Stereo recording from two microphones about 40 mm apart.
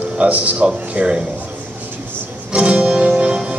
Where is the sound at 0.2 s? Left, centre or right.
Right.